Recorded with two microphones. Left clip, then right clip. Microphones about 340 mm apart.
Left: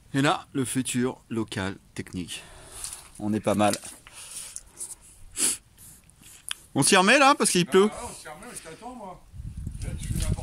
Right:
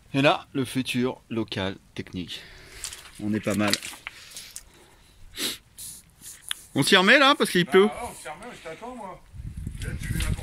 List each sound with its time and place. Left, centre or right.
0.1 s speech: centre
5.3 s snort: centre
6.5 s speech: centre